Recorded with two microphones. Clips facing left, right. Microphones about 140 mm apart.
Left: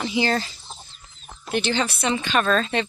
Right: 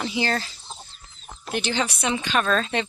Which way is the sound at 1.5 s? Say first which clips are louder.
Left 2 dB; 10° right (ahead or behind).